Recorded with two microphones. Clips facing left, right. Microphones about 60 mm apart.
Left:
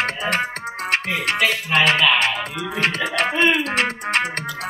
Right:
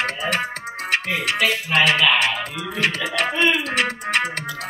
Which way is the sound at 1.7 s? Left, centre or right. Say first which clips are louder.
Even; centre.